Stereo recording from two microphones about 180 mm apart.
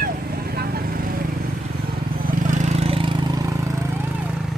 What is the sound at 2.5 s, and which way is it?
Vehicle, 35° right (ahead or behind).